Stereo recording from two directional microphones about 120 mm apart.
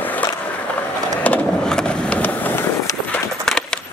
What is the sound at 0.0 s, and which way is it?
Skateboard, 15° left (ahead or behind).